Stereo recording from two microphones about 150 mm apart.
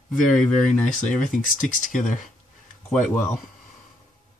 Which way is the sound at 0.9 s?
55° left (ahead or behind).